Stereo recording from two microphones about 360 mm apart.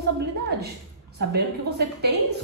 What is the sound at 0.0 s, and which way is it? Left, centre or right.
A woman's voice, right.